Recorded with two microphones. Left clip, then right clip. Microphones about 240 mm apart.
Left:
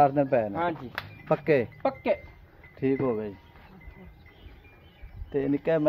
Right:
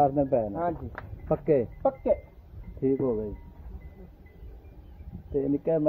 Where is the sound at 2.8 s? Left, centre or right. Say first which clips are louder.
Even; left.